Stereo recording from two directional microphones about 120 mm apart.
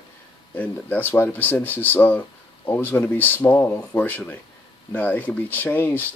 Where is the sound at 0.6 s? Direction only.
15° left (ahead or behind).